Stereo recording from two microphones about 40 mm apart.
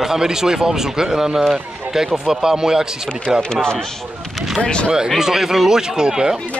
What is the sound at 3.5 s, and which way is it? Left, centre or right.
Speech, centre.